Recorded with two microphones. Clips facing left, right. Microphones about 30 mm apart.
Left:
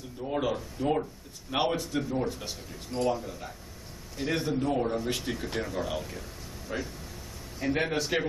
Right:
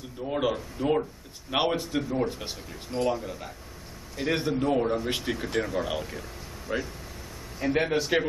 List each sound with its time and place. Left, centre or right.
0.2 s a man's voice: centre
2.9 s a man's voice: centre
7.6 s a man's voice: centre